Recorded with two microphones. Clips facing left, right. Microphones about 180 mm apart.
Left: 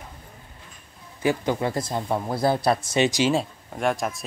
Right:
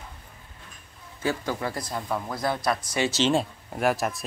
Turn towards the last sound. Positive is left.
turn(degrees=0)  # may be behind; listen again after turning